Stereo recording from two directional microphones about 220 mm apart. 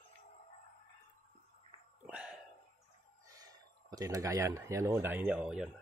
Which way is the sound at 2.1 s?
5° right (ahead or behind).